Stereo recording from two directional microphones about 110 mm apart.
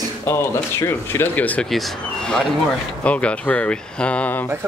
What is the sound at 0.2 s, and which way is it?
Speech, 25° left (ahead or behind).